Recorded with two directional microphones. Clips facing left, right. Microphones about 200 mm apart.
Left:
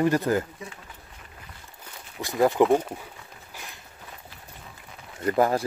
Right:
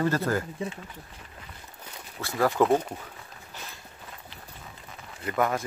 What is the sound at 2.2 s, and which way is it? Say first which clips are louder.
Speech: left 3 dB; 20° left (ahead or behind).